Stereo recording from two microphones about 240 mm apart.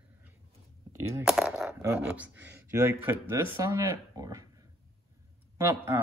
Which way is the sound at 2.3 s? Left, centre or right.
Right.